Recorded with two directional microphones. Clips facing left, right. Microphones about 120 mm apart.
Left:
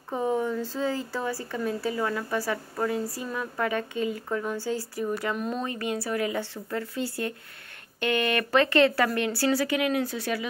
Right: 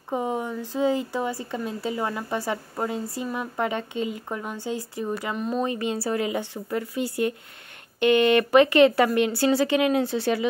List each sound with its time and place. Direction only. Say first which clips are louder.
0.1 s speech: left 1 dB; 15° right (ahead or behind)
5.3 s speech: right 2 dB; centre (ahead or behind)
5.7 s speech: right 3 dB; 20° right (ahead or behind)
5.9 s a woman's voice: right 3 dB; 30° right (ahead or behind)
6.2 s speech: right 2 dB; 15° right (ahead or behind)